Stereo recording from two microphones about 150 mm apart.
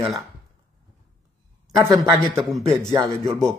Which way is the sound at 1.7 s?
20° right (ahead or behind).